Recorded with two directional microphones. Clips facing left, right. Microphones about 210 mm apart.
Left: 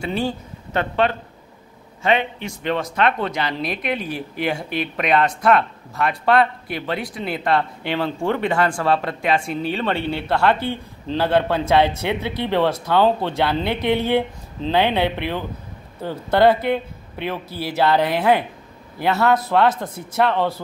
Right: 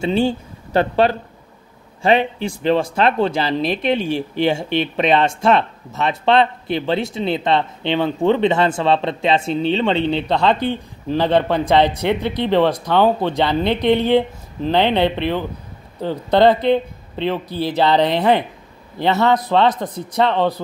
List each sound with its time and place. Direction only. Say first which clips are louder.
0.0 s speech: right 6 dB; 25° right (ahead or behind)
14.7 s speech: right 3 dB; 10° left (ahead or behind)
16.0 s speech: right 2 dB; 15° right (ahead or behind)
18.1 s speech: right 2 dB; 5° left (ahead or behind)
18.9 s speech: right 3 dB; 20° right (ahead or behind)
19.6 s speech: right 2 dB; 5° left (ahead or behind)
20.2 s speech: right 4 dB; 15° right (ahead or behind)